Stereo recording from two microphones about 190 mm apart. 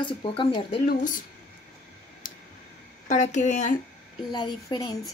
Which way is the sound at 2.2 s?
45° left (ahead or behind).